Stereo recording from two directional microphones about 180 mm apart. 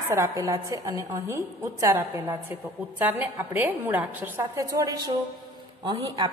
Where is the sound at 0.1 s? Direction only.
15° right (ahead or behind).